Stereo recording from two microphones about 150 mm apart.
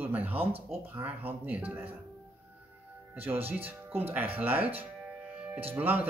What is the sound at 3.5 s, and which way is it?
Speech, 15° right (ahead or behind).